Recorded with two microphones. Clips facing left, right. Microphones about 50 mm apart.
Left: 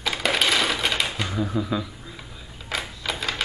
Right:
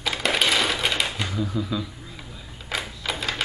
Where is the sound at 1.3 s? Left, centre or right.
Centre.